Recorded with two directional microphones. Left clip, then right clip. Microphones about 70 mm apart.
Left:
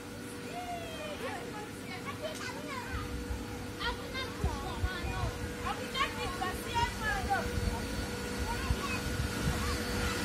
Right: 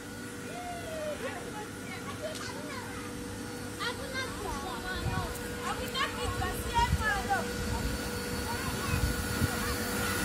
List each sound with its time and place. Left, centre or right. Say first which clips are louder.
5.9 s a sound: even; centre
7.1 s vehicle: right 2 dB; right
8.5 s vehicle: even; right